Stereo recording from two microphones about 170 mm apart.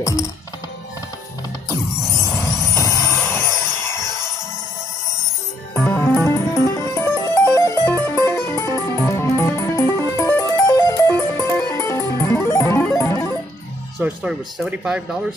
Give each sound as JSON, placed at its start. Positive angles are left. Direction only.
{"t": 0.0, "sound": "music", "side_deg": 15}
{"t": 2.4, "sound": "music", "side_deg": 15}
{"t": 5.8, "sound": "music", "side_deg": 15}
{"t": 13.9, "sound": "speech", "side_deg": -5}